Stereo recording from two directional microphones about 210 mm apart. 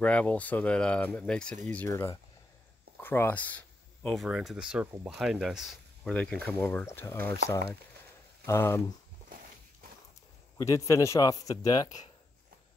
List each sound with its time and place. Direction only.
0.0 s speech: 5° left (ahead or behind)
8.5 s speech: 10° left (ahead or behind)
10.6 s speech: 15° left (ahead or behind)